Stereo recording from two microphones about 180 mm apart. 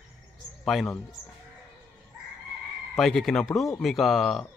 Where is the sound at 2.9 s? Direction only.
Centre (ahead or behind).